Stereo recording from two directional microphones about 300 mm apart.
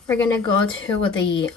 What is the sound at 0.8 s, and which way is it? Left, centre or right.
Speech, left.